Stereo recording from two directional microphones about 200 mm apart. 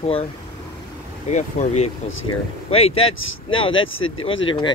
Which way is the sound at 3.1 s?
85° left.